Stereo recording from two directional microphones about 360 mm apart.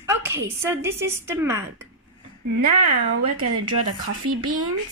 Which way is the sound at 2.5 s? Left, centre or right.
Right.